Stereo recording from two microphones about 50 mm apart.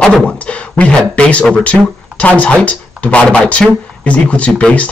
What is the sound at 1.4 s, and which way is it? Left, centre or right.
A man's voice, left.